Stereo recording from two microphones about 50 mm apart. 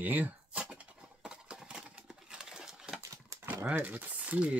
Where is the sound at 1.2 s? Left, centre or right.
Centre.